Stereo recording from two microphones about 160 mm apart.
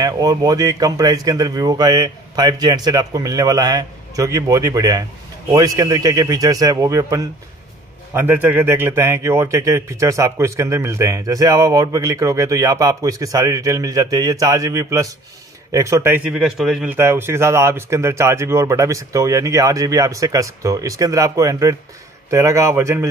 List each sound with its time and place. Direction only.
0.0 s a man's voice: 20° right (ahead or behind)
16.3 s a man's voice: 5° right (ahead or behind)